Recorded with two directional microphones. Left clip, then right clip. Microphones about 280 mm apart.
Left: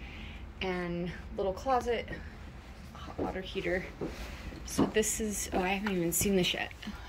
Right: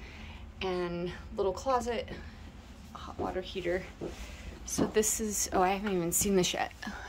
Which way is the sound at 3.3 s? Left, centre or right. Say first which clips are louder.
Even; centre.